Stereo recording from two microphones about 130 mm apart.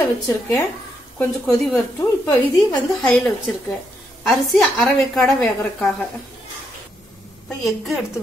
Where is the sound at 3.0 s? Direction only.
10° left (ahead or behind).